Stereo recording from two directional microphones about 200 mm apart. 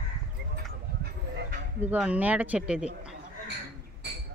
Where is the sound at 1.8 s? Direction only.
10° right (ahead or behind).